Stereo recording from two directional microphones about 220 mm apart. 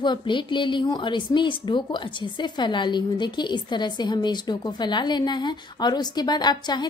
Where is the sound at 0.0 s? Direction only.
20° left (ahead or behind).